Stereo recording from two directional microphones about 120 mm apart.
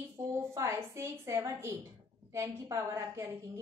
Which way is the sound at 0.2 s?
20° right (ahead or behind).